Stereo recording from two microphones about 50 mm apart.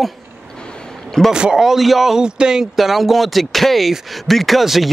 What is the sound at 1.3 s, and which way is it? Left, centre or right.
Speech, centre.